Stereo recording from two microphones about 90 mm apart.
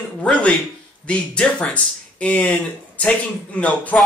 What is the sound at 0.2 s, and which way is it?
A man's voice, 10° left (ahead or behind).